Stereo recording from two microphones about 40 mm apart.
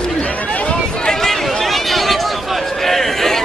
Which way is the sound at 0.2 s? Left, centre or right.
Left.